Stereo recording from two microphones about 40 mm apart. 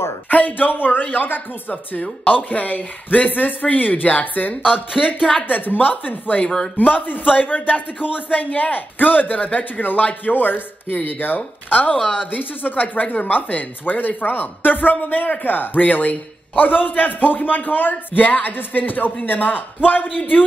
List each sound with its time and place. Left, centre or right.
0.3 s a man's voice: left
2.5 s a man's voice: left
4.9 s speech: centre
5.5 s a man's voice: left
6.4 s speech: centre
6.8 s a man's voice: left
10.3 s a man's voice: left